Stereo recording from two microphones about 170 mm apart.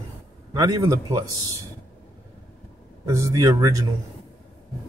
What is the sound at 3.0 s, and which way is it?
Speech, 15° right (ahead or behind).